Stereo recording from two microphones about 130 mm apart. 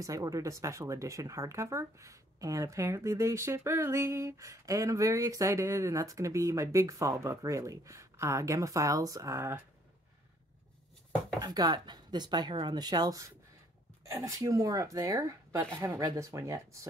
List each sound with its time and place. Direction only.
0.0 s speech: 25° right (ahead or behind)
11.4 s speech: 30° right (ahead or behind)